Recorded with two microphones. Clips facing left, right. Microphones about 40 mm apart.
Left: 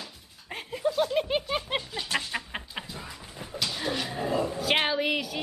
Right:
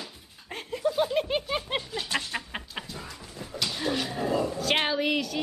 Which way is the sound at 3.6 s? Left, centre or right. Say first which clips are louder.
Right 1 dB; centre.